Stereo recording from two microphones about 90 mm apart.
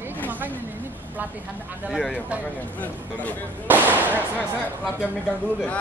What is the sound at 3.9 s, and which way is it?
Speech, 20° right (ahead or behind).